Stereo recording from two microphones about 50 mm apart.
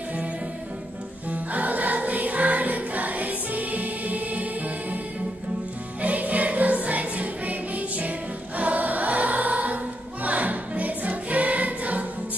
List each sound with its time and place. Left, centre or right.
1.3 s music: right
5.9 s music: right
8.5 s choir: right
10.2 s music: right